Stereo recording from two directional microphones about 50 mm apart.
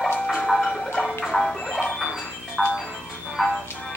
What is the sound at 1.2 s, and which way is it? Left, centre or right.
Music, centre.